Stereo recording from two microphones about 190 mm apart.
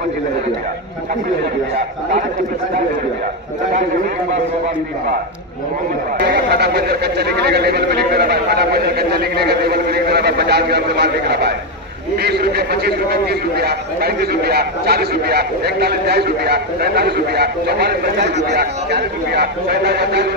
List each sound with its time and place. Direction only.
6.1 s speech: 60° right (ahead or behind)